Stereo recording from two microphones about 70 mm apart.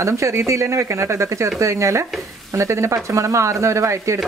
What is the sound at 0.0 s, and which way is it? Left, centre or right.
Speech, right.